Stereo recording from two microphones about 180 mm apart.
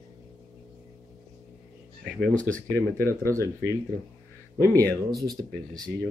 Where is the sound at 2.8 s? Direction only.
15° left (ahead or behind).